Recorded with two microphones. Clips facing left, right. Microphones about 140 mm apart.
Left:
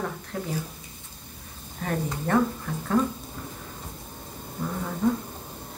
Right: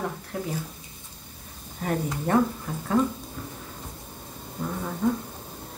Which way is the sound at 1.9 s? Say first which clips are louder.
Right 1 dB; 10° right (ahead or behind).